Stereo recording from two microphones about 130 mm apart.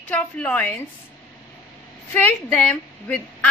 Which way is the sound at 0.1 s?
10° left (ahead or behind).